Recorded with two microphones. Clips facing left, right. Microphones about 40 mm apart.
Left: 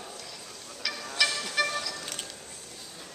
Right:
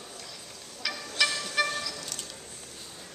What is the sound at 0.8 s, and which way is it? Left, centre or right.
Music, centre.